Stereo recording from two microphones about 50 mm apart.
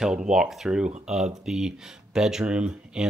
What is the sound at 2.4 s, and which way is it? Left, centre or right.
Speech, right.